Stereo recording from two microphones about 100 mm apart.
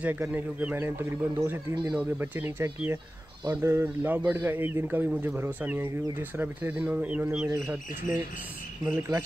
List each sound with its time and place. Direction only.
0.0 s a man's voice: 15° right (ahead or behind)
1.9 s a man's voice: 15° right (ahead or behind)
8.8 s a man's voice: 25° right (ahead or behind)